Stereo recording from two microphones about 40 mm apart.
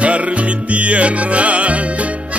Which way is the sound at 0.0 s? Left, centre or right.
Right.